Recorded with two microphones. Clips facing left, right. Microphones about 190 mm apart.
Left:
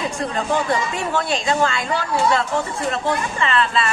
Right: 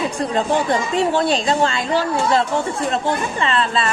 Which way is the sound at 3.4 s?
35° right (ahead or behind).